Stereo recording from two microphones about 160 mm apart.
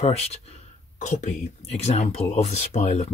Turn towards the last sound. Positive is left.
turn(degrees=45)  # may be behind; listen again after turning